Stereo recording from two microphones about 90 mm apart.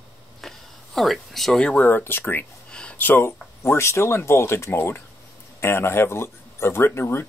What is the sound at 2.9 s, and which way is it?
Speech, 20° left (ahead or behind).